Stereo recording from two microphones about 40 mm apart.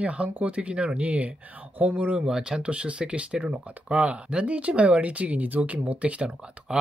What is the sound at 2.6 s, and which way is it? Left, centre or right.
Speech, right.